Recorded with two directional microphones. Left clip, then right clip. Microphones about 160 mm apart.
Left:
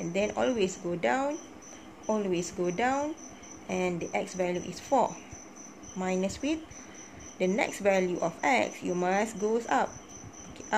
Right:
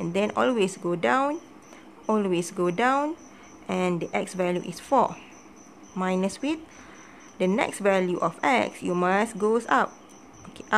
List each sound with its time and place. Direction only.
0.1 s speech: 40° right (ahead or behind)